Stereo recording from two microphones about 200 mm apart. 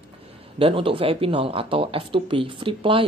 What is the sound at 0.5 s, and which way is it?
Speech, 25° right (ahead or behind).